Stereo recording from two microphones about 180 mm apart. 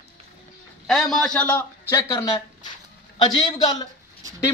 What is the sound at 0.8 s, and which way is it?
A man's voice, 5° left (ahead or behind).